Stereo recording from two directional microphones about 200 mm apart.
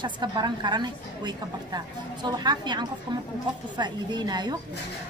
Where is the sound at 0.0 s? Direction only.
20° right (ahead or behind).